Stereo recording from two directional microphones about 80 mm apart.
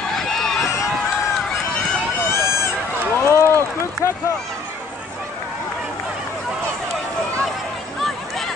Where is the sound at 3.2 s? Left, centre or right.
Left.